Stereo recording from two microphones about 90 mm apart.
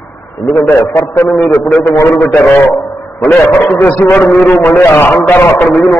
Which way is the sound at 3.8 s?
20° left (ahead or behind).